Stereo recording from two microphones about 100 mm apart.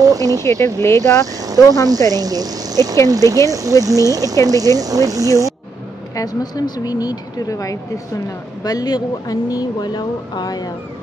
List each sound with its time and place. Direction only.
0.0 s speech: 35° right (ahead or behind)
0.4 s speech: 25° left (ahead or behind)
1.2 s vehicle: 40° right (ahead or behind)
1.9 s speech: 40° right (ahead or behind)
6.1 s speech: 40° left (ahead or behind)